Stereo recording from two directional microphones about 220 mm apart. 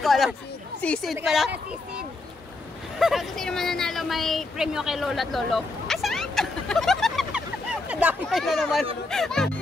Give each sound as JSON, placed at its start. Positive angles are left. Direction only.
{"t": 0.0, "sound": "speech", "side_deg": 0}
{"t": 3.0, "sound": "speech", "side_deg": 0}